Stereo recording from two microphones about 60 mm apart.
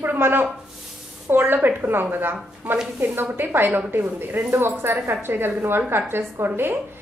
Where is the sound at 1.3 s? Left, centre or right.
Right.